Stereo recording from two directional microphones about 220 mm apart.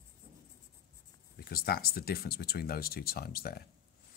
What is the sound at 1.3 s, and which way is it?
A man's voice, 45° left (ahead or behind).